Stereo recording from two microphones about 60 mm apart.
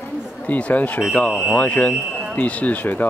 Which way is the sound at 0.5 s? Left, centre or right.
Left.